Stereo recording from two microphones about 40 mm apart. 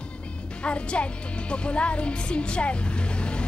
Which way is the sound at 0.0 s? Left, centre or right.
Left.